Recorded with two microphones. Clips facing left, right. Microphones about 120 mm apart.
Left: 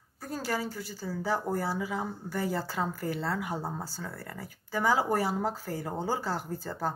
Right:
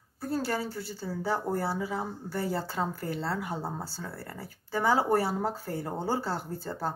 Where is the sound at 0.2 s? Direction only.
30° right (ahead or behind).